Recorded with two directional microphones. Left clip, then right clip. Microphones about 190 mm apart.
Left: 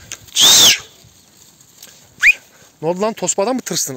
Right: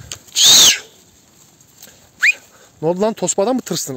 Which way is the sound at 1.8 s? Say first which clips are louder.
Even; 30° right (ahead or behind).